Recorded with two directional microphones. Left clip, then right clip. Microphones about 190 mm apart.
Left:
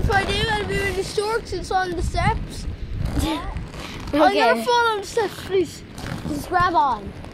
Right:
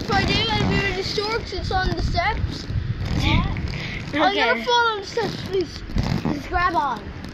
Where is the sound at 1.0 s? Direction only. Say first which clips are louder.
Left 1 dB; 65° left (ahead or behind).